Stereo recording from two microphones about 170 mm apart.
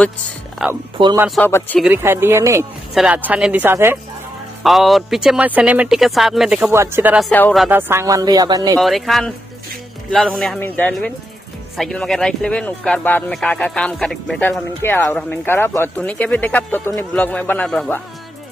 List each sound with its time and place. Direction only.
0.6 s speech: 5° right (ahead or behind)
1.0 s speech: 30° right (ahead or behind)
1.3 s speech: 10° left (ahead or behind)
1.8 s speech: 10° right (ahead or behind)
2.9 s speech: 5° right (ahead or behind)
4.6 s speech: centre (ahead or behind)
6.7 s speech: 15° right (ahead or behind)
7.2 s speech: 5° left (ahead or behind)
7.7 s speech: 15° right (ahead or behind)
8.7 s speech: centre (ahead or behind)
14.5 s speech: 15° left (ahead or behind)